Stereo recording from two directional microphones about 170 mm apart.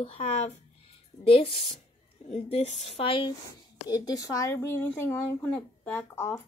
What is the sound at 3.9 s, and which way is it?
Speech, 20° left (ahead or behind).